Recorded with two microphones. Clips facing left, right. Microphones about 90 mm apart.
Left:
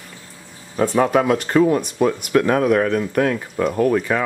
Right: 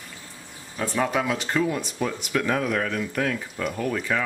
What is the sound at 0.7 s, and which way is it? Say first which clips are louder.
Speech: left 8 dB; 50° left (ahead or behind).